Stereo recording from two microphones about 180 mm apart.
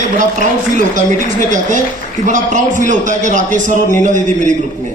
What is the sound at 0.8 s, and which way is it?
A man's voice, 45° right (ahead or behind).